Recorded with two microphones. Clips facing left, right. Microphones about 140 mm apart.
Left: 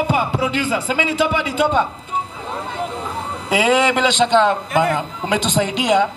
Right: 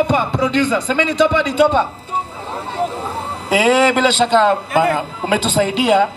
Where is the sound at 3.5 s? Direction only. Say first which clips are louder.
Right 3 dB; 35° right (ahead or behind).